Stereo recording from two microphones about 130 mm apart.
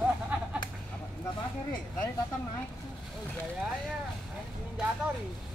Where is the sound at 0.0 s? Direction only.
10° right (ahead or behind).